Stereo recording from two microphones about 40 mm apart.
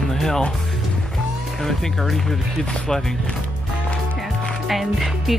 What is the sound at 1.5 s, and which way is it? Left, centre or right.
Speech, centre.